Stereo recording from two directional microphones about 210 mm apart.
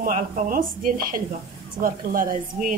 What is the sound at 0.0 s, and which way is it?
Speech, 40° right (ahead or behind).